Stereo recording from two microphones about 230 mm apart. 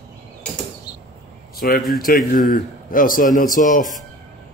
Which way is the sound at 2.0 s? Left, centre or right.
Left.